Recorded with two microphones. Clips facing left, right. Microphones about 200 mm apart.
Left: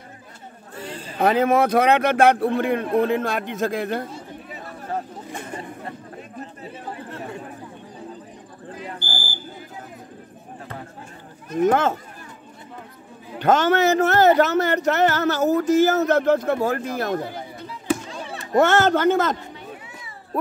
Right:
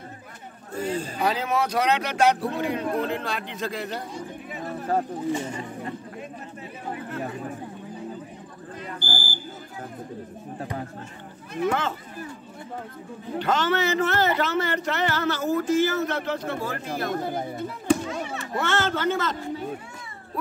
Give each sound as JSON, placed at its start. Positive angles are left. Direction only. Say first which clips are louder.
{"t": 0.7, "sound": "a sound", "louder": "right 7 dB", "side_deg": -45}
{"t": 1.2, "sound": "speech", "louder": "left 8 dB", "side_deg": 55}
{"t": 9.0, "sound": "smoke detector", "louder": "right 1 dB", "side_deg": 20}
{"t": 11.5, "sound": "speech", "louder": "left 7 dB", "side_deg": 45}
{"t": 13.4, "sound": "speech", "louder": "left 6 dB", "side_deg": 50}
{"t": 17.3, "sound": "chop", "louder": "right 5 dB", "side_deg": -50}
{"t": 18.5, "sound": "speech", "louder": "left 9 dB", "side_deg": 45}